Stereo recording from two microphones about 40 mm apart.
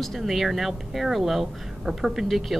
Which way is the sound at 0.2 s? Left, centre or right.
Centre.